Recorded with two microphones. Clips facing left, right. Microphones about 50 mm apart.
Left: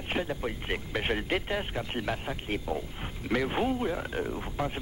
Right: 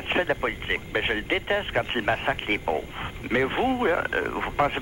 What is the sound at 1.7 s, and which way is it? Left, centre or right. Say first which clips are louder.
Speech: right 8 dB; right.